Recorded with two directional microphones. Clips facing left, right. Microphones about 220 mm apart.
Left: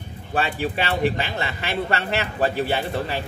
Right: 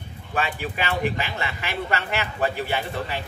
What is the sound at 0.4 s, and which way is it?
Speech, 35° left (ahead or behind).